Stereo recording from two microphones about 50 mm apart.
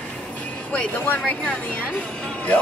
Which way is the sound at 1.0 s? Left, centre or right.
Left.